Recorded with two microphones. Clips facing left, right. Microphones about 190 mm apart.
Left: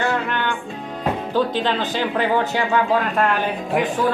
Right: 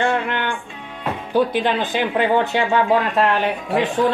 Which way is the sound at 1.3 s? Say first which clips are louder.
Right 4 dB; 15° right (ahead or behind).